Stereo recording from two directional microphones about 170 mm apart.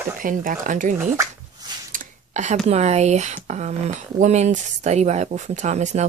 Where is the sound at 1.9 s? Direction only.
50° right (ahead or behind).